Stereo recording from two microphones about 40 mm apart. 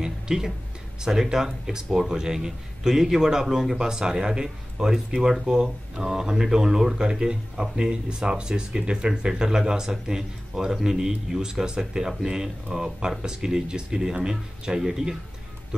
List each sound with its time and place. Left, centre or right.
0.0 s music: centre
1.0 s speech: centre